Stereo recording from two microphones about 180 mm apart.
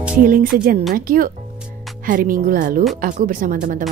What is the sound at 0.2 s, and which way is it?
Speech, 50° right (ahead or behind).